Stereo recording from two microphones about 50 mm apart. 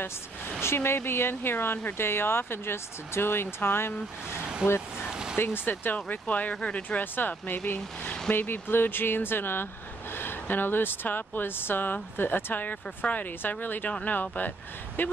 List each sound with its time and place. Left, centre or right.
0.6 s speech: left
4.6 s speech: centre
5.1 s a sound: centre
5.4 s speech: left
5.9 s speech: left
8.3 s speech: left